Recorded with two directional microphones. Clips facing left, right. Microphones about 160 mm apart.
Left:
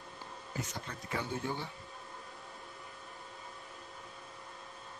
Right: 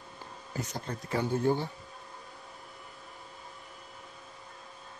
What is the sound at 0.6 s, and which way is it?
Speech, 40° right (ahead or behind).